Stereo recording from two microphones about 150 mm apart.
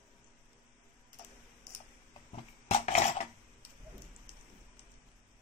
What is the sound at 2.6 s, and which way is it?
Dishes, 45° left (ahead or behind).